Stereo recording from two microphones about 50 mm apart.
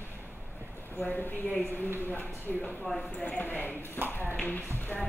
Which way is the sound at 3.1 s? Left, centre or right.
Left.